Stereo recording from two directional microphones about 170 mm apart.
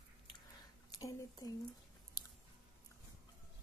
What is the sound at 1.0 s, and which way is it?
Speech, 20° left (ahead or behind).